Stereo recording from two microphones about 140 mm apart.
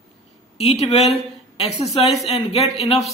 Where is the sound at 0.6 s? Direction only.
50° left (ahead or behind).